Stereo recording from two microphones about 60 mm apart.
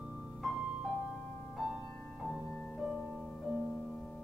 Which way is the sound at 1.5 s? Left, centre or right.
Centre.